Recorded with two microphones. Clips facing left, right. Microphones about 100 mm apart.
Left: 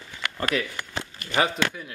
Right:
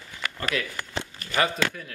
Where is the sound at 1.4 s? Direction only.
5° left (ahead or behind).